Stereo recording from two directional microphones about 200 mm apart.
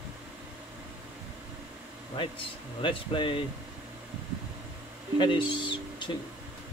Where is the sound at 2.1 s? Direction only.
25° left (ahead or behind).